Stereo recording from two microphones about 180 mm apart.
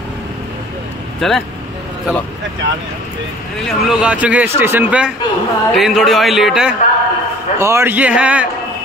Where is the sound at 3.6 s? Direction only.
5° right (ahead or behind).